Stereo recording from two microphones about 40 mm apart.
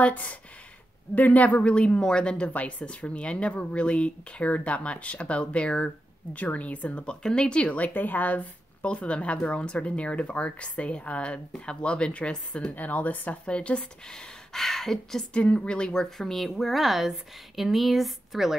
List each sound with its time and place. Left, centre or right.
0.0 s speech: left
1.6 s a woman's voice: left
2.4 s speech: left
6.3 s speech: left
7.2 s speech: left
8.8 s a woman's voice: left
12.7 s speech: left
13.5 s a woman's voice: left
14.0 s speech: centre
15.3 s a woman's voice: left; by 16.4 s centre
16.4 s speech: centre